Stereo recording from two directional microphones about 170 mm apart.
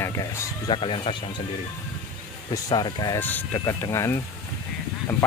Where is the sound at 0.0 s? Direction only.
20° left (ahead or behind).